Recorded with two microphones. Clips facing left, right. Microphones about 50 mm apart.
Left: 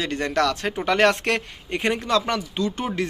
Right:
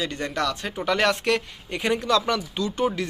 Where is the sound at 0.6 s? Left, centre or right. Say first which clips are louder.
Left 2 dB; left.